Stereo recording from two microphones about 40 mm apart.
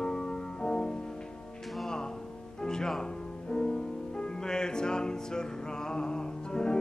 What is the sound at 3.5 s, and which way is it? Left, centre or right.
Music, centre.